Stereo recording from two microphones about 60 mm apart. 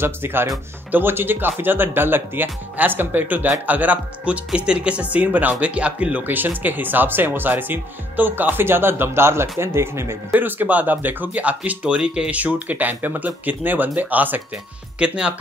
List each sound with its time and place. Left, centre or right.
0.0 s speech: right
10.3 s speech: right
15.0 s speech: centre